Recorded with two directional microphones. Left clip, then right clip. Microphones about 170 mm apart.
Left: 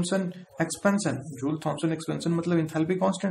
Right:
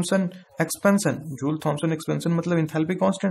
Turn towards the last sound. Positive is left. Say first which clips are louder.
# right 3 dB
turn(degrees=-25)  # may be behind; listen again after turning